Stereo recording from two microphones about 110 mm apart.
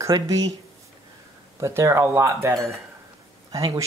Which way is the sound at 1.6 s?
25° right (ahead or behind).